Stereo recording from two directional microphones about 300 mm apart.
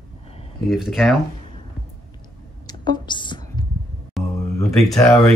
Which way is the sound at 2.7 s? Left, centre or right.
Centre.